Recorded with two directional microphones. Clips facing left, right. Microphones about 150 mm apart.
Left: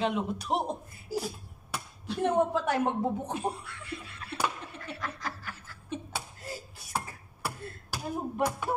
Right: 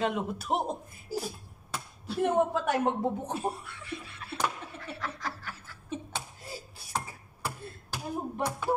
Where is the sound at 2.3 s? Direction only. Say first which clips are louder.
Left 1 dB; 20° right (ahead or behind).